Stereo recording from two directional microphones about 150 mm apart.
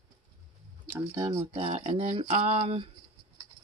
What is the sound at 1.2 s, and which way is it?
Speech, 20° right (ahead or behind).